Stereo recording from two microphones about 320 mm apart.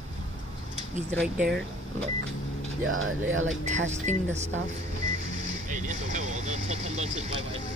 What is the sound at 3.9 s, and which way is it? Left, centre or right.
Speech, right.